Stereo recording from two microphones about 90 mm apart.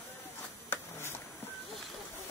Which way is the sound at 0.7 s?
30° left (ahead or behind).